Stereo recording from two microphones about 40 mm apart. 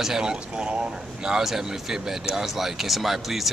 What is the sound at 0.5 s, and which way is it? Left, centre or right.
Speech, right.